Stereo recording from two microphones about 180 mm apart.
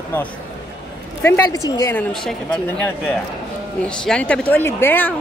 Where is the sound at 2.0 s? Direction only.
Centre (ahead or behind).